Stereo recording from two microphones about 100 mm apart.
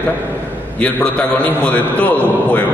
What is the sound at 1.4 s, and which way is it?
A man's voice, 15° left (ahead or behind).